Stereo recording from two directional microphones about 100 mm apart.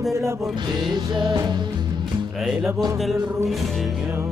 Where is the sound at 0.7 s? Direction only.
50° right (ahead or behind).